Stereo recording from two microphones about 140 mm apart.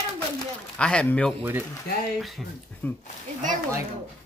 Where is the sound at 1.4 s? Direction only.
15° right (ahead or behind).